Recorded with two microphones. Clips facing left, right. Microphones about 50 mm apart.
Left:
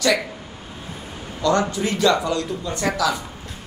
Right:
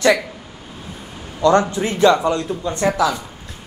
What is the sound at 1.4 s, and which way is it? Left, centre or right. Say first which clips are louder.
A man's voice: right 5 dB; right.